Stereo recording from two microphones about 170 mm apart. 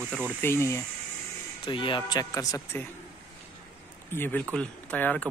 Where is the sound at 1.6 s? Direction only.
30° left (ahead or behind).